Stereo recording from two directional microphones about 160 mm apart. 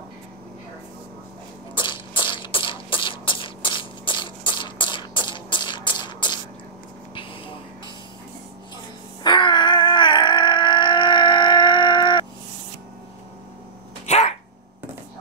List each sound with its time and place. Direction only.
1.8 s beatboxing: 30° left (ahead or behind)
9.2 s a sound: 30° left (ahead or behind)
14.0 s dog: 45° left (ahead or behind)